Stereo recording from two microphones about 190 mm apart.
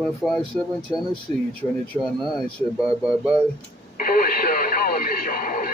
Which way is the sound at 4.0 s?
50° left (ahead or behind).